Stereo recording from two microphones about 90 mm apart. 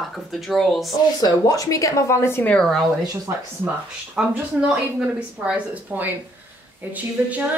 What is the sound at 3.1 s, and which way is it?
Speech, 35° right (ahead or behind).